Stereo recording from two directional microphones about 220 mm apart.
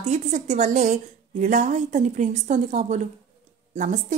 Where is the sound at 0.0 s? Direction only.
30° right (ahead or behind).